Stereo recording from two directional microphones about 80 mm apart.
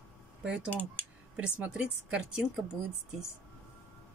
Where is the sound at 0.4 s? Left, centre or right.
Centre.